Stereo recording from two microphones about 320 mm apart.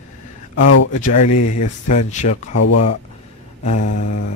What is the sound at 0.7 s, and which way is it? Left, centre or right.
Speech, left.